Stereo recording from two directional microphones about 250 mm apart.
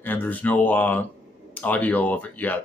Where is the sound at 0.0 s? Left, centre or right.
Centre.